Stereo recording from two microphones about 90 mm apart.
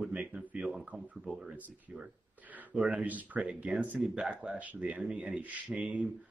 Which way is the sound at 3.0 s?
15° right (ahead or behind).